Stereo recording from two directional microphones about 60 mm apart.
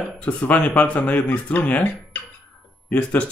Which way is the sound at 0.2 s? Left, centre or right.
Left.